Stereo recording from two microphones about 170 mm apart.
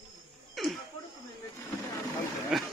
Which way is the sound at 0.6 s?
Centre (ahead or behind).